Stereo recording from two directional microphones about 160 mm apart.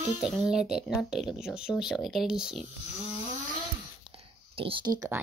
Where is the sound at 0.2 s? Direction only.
5° right (ahead or behind).